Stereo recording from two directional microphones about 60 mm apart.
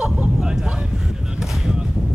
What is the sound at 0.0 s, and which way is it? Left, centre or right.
Vehicle, centre.